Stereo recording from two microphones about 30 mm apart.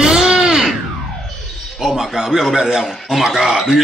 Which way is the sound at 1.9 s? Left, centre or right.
Centre.